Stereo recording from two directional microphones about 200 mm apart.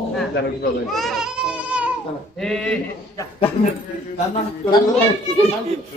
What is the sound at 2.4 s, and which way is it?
Speech, 5° left (ahead or behind).